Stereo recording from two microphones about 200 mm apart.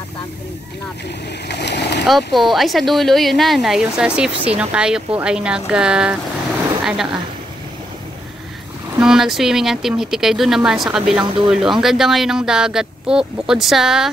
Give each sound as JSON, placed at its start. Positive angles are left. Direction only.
{"t": 1.5, "sound": "vehicle", "side_deg": 60}
{"t": 2.0, "sound": "speech", "side_deg": 0}
{"t": 9.0, "sound": "speech", "side_deg": 0}